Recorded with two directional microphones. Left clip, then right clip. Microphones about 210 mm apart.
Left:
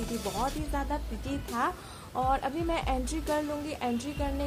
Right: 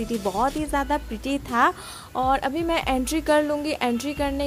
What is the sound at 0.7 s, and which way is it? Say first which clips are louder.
Speech: right 9 dB; 45° right (ahead or behind).